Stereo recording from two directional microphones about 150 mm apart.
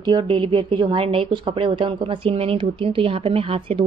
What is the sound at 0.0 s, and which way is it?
A woman's voice, 35° right (ahead or behind).